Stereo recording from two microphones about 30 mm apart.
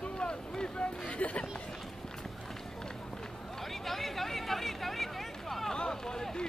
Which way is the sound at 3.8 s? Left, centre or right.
Centre.